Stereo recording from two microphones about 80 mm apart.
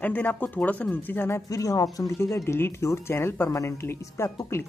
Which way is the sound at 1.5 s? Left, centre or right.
Left.